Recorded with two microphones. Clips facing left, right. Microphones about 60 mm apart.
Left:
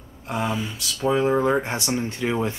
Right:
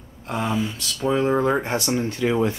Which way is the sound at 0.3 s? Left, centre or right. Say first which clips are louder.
Right 2 dB; centre.